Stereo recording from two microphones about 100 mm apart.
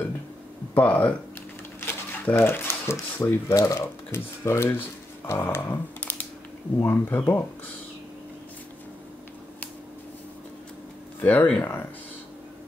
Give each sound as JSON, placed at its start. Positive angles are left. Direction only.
{"t": 0.7, "sound": "speech", "side_deg": 15}
{"t": 11.1, "sound": "speech", "side_deg": 15}